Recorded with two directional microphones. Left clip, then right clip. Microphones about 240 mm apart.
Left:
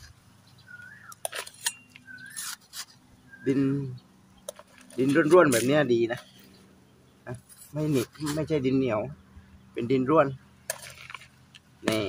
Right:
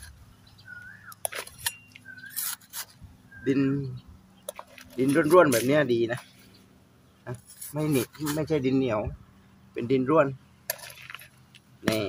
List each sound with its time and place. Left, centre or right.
1.2 s dishes: centre
2.4 s a sound: right
3.4 s speech: centre
7.2 s cutlery: centre
8.0 s speech: right
8.4 s speech: centre
11.1 s a sound: centre